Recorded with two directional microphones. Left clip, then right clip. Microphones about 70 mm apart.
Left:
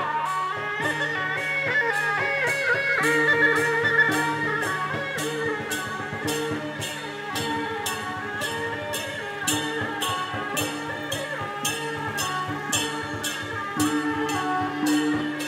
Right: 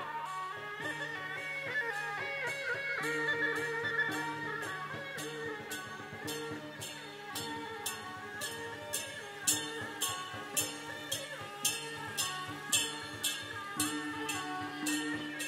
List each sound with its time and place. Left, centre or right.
0.1 s music: centre
13.7 s music: right